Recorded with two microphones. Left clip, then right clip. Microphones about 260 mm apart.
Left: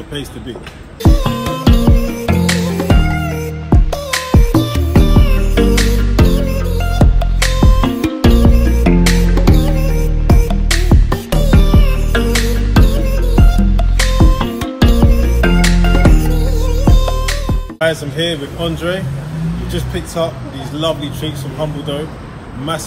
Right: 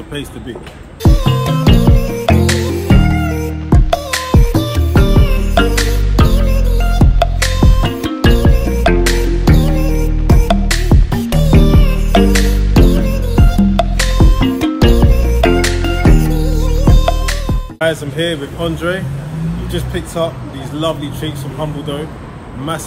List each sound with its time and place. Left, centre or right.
1.0 s music: centre
17.7 s speech: centre